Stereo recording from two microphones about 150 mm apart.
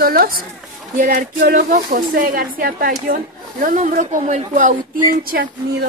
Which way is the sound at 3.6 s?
55° right (ahead or behind).